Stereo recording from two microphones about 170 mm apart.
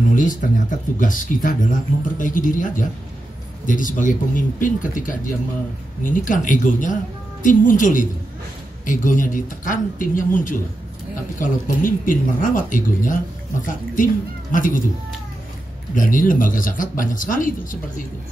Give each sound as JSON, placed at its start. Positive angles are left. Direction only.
{"t": 0.1, "sound": "speech", "side_deg": 50}
{"t": 15.9, "sound": "speech", "side_deg": 50}